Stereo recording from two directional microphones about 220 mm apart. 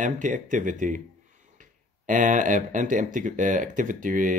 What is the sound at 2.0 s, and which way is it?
Speech, 35° right (ahead or behind).